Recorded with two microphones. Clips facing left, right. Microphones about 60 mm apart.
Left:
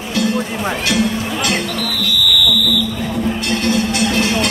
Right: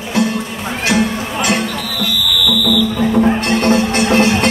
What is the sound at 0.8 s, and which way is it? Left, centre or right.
Music, right.